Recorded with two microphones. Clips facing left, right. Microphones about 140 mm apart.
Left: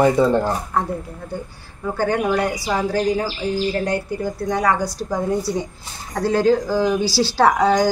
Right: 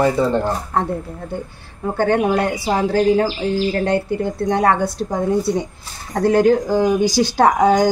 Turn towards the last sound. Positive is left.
turn(degrees=-20)  # may be behind; listen again after turning